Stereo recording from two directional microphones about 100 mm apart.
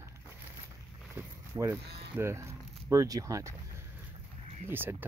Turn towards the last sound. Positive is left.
turn(degrees=-20)  # may be behind; listen again after turning